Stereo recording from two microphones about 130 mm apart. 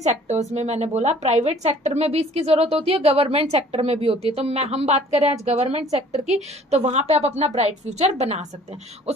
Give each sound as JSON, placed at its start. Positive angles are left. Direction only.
{"t": 0.0, "sound": "speech", "side_deg": -60}